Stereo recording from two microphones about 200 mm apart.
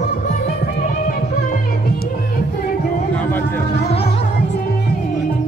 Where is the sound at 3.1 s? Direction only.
10° left (ahead or behind).